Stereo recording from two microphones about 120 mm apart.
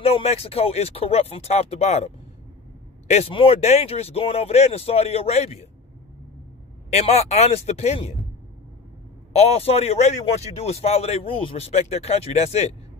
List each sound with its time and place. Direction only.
0.0 s a man's voice: 60° left (ahead or behind)
6.9 s a man's voice: 60° left (ahead or behind)
9.3 s a man's voice: 65° left (ahead or behind)